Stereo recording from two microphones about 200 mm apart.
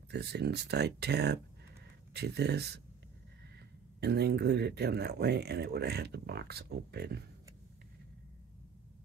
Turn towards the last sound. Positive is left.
turn(degrees=-55)  # may be behind; listen again after turning